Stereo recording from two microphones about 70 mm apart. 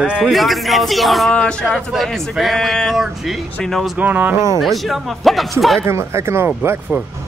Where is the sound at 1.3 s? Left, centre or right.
Centre.